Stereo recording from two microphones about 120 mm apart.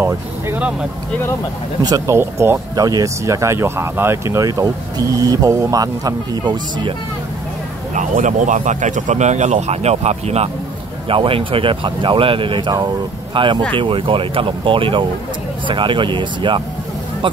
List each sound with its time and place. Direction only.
1.8 s speech: 35° right (ahead or behind)
2.1 s speech: 20° right (ahead or behind)
2.7 s speech: 30° right (ahead or behind)
7.9 s speech: 90° right; by 10.5 s 60° right (ahead or behind)
11.1 s speech: 50° right (ahead or behind)